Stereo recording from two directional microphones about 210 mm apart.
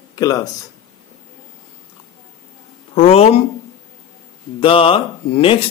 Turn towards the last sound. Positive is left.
turn(degrees=25)  # may be behind; listen again after turning